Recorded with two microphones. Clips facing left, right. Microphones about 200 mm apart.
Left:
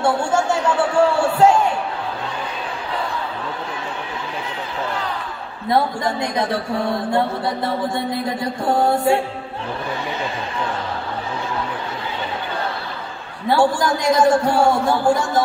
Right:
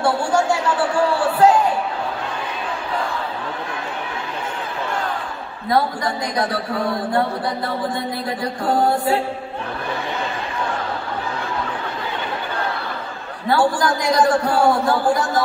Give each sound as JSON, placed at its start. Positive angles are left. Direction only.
{"t": 0.0, "sound": "a man's voice", "side_deg": 25}
{"t": 5.7, "sound": "a man's voice", "side_deg": 25}
{"t": 8.8, "sound": "a man's voice", "side_deg": 25}
{"t": 13.5, "sound": "a man's voice", "side_deg": 25}